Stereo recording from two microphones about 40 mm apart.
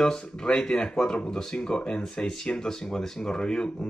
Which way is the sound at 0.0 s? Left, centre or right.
Centre.